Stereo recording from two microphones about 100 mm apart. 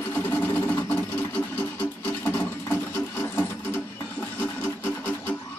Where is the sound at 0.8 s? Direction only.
20° left (ahead or behind).